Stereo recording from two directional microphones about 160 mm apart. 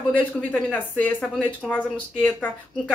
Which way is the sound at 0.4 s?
10° left (ahead or behind).